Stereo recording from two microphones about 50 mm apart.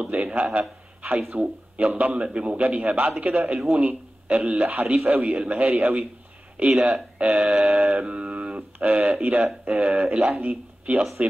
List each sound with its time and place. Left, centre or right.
0.0 s a man's voice: right
5.3 s a man's voice: right
5.7 s a man's voice: right
6.5 s a man's voice: right
7.9 s mantra: centre
8.7 s a man's voice: right